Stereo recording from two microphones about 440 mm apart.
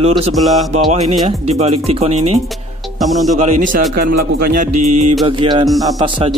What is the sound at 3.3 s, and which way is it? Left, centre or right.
A man's voice, centre.